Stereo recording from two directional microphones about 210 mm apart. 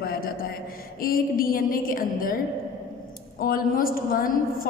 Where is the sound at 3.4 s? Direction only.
45° left (ahead or behind).